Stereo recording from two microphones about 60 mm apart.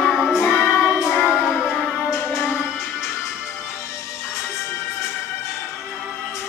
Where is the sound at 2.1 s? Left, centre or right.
Left.